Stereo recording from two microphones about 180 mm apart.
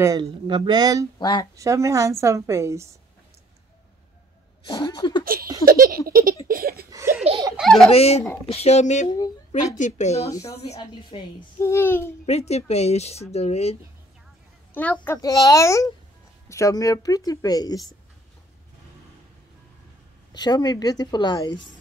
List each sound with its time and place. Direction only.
0.0 s speech: 25° right (ahead or behind)
1.2 s a child's voice: 25° left (ahead or behind)
1.6 s a woman's voice: 15° right (ahead or behind)
4.6 s a child's voice: 25° left (ahead or behind)
5.2 s laughter: 55° right (ahead or behind)
5.7 s a sound: 55° right (ahead or behind)
6.4 s laughter: 55° right (ahead or behind)
7.5 s baby laughter: centre (ahead or behind)
7.9 s a child's voice: 35° left (ahead or behind); by 12.1 s 10° left (ahead or behind)
12.3 s speech: 35° left (ahead or behind)
14.7 s a child's voice: 10° left (ahead or behind)
20.3 s a child's voice: 20° left (ahead or behind)